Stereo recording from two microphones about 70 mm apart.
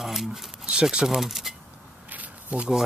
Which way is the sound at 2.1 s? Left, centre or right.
Right.